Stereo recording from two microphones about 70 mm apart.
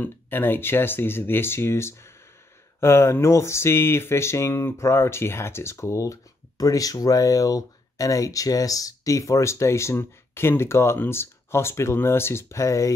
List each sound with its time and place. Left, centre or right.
0.0 s speech: left
6.6 s speech: left